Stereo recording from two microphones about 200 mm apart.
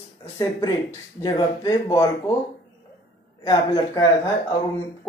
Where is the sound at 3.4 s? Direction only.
20° left (ahead or behind).